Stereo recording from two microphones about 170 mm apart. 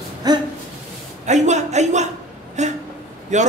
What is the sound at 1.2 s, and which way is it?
A man's voice, 45° right (ahead or behind).